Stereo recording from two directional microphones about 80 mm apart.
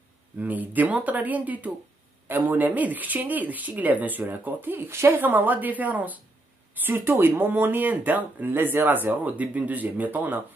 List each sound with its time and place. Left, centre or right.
0.4 s speech: right